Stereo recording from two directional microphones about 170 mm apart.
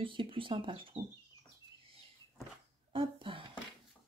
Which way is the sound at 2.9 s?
30° right (ahead or behind).